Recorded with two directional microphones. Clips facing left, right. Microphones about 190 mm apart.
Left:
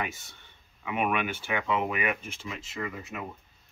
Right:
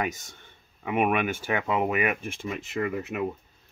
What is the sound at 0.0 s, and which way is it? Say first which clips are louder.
Speech: right 5 dB; 45° right (ahead or behind).